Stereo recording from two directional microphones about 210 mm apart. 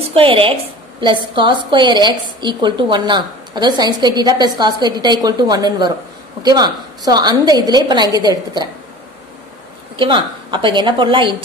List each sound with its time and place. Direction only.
0.0 s a woman's voice: 25° right (ahead or behind)
9.9 s a woman's voice: 20° right (ahead or behind)